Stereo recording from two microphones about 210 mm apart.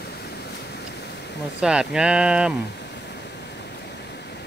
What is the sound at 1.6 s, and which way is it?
Speech, 5° right (ahead or behind).